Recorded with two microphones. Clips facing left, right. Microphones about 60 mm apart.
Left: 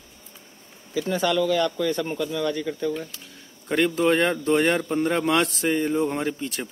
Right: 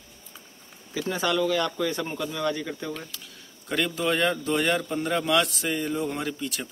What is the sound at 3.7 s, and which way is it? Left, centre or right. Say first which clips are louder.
A man's voice: left 5 dB; left.